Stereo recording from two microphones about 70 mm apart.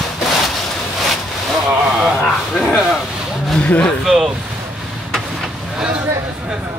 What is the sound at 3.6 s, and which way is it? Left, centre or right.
Speech, centre.